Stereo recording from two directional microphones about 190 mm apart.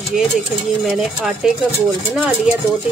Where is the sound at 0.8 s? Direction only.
Centre (ahead or behind).